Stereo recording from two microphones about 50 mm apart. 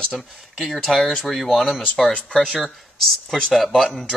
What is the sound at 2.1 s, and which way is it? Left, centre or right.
Speech, left.